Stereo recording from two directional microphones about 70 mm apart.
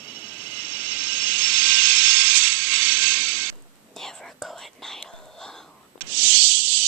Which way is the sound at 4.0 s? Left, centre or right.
Centre.